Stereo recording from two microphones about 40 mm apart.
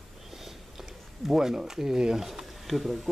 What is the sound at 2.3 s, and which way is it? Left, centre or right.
Speech, centre.